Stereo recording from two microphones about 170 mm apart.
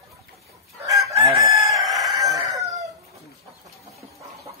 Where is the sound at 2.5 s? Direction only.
20° right (ahead or behind).